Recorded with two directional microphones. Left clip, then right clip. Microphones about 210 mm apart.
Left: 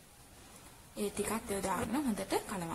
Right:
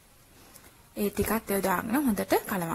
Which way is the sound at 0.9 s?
30° right (ahead or behind).